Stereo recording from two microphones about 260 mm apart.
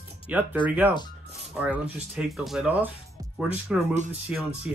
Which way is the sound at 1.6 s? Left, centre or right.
Centre.